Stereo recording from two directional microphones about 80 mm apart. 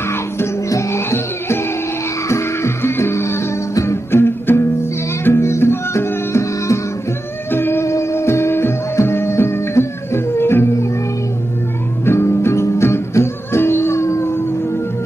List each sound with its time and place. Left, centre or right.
0.1 s music: left
12.0 s music: left